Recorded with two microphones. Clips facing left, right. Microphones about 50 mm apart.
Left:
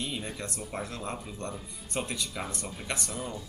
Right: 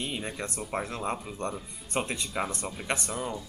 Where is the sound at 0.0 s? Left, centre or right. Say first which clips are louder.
Right 2 dB; right.